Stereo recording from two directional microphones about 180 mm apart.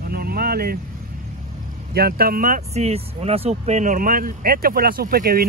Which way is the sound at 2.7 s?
35° right (ahead or behind).